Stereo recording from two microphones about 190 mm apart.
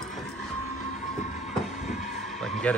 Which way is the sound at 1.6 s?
Centre (ahead or behind).